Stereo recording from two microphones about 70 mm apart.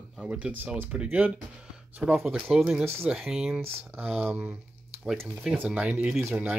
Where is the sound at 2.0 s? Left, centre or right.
Centre.